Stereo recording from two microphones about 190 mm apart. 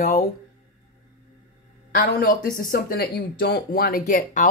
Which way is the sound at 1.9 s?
50° left (ahead or behind).